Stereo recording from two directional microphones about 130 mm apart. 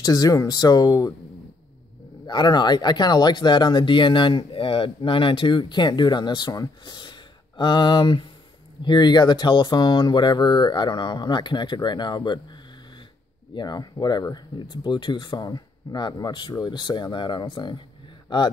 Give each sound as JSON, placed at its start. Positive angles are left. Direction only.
{"t": 0.0, "sound": "speech", "side_deg": 30}
{"t": 2.2, "sound": "speech", "side_deg": 35}
{"t": 13.6, "sound": "speech", "side_deg": 35}